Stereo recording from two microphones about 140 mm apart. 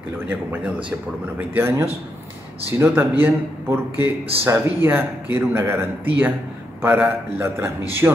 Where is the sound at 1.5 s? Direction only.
15° right (ahead or behind).